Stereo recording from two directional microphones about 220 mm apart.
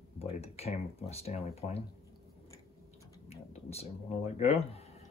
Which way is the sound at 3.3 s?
30° left (ahead or behind).